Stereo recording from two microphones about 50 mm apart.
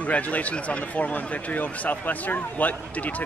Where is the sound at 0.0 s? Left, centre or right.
Left.